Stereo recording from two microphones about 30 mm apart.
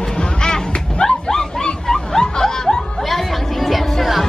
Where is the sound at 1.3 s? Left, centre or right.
Centre.